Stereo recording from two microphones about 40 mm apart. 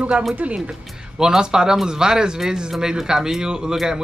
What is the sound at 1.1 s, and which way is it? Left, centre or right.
Speech, centre.